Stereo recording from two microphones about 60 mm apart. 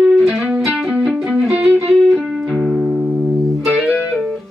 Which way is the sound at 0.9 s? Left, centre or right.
Centre.